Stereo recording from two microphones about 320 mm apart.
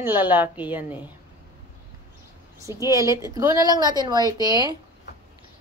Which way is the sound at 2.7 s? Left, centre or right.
Centre.